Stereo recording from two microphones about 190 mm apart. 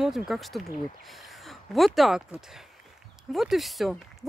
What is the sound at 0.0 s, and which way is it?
Speech, centre (ahead or behind).